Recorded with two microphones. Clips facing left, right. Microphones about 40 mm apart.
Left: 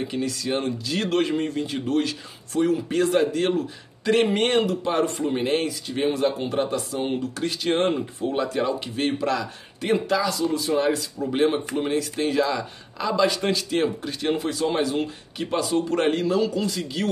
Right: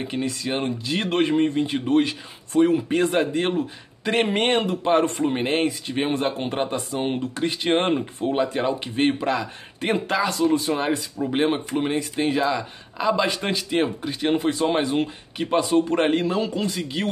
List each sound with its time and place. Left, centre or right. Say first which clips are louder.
0.0 s speech: even; right
9.8 s speech: even; right
10.8 s speech: left 1 dB; right
14.3 s speech: right 3 dB; right